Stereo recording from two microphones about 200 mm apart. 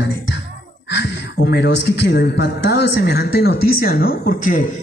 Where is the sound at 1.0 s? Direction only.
55° left (ahead or behind).